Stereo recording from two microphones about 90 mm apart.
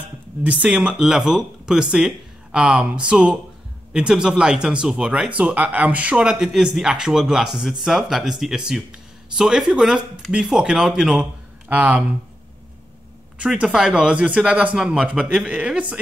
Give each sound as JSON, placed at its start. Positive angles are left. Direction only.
{"t": 0.4, "sound": "speech", "side_deg": -15}
{"t": 11.7, "sound": "speech", "side_deg": -15}
{"t": 13.4, "sound": "speech", "side_deg": -10}